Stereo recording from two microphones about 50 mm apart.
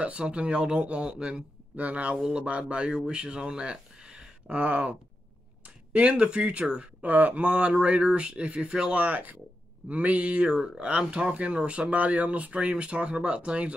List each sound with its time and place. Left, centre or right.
0.0 s speech: right
9.0 s speech: right